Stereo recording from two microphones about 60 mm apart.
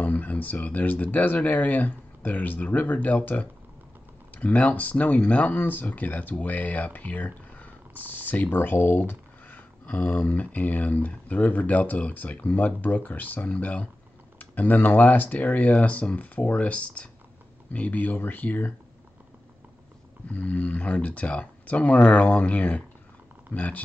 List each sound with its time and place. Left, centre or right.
0.0 s speech: left
9.8 s speech: left
20.2 s speech: left